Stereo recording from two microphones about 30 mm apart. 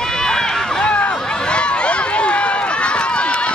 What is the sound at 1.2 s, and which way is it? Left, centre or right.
Run, left.